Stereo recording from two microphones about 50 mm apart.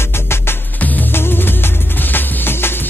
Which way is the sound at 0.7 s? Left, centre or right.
Left.